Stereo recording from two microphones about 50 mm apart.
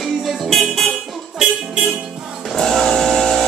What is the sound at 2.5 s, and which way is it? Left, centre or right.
Vehicle, centre.